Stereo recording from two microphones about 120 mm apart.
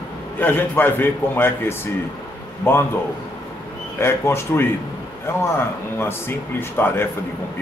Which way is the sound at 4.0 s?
20° left (ahead or behind).